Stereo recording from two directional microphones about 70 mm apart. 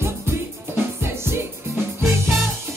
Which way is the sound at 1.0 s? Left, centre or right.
Right.